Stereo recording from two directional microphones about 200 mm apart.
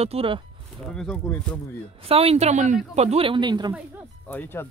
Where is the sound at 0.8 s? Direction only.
5° left (ahead or behind).